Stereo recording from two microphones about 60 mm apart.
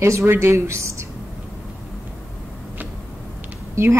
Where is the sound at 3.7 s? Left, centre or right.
Right.